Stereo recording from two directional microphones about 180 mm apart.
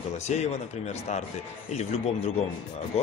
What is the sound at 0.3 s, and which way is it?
Speech, 40° left (ahead or behind).